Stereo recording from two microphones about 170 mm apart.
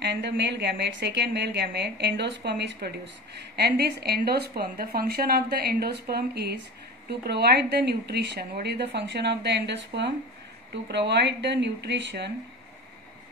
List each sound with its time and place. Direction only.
0.0 s a woman's voice: 90° right
3.5 s a woman's voice: 70° right (ahead or behind); by 12.3 s 90° right